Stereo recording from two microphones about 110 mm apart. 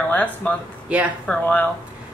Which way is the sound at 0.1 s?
15° left (ahead or behind).